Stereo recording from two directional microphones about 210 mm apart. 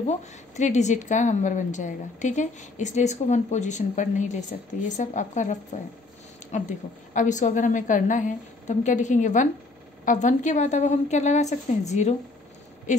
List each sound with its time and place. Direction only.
0.0 s a woman's voice: 35° left (ahead or behind)